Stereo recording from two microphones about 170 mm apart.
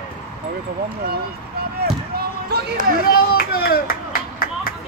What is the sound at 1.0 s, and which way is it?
Basketball bounce, 65° right (ahead or behind).